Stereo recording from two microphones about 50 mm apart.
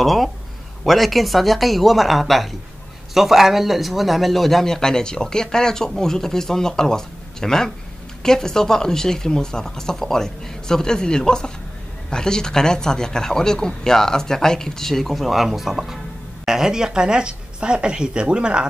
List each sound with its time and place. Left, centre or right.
0.0 s speech: centre